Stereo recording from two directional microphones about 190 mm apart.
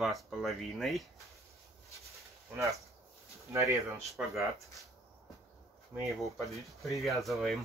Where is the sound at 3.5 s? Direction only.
15° right (ahead or behind).